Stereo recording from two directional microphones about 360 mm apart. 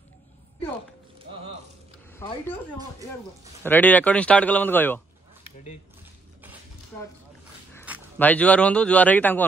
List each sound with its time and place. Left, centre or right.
2.1 s speech: centre
3.6 s speech: centre
7.8 s speech: centre